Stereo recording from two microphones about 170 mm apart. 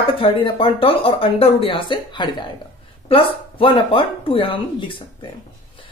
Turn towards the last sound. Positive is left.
turn(degrees=30)  # may be behind; listen again after turning